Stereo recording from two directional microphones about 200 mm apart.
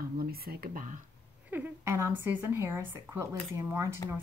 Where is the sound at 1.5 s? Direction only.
10° right (ahead or behind).